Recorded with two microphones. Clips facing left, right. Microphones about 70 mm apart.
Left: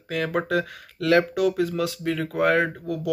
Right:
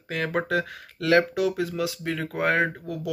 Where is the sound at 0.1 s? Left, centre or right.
Right.